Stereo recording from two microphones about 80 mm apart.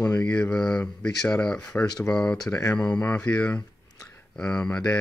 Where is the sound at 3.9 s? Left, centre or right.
Left.